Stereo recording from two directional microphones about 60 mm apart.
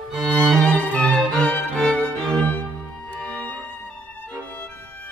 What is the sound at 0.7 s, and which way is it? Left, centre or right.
Violin, left.